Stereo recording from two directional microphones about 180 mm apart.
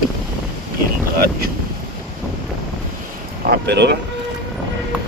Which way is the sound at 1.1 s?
55° right (ahead or behind).